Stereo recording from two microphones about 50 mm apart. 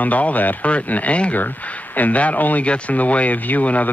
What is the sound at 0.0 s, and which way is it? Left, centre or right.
Speech, left.